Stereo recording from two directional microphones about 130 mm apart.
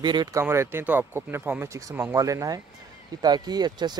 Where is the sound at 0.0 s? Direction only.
35° right (ahead or behind).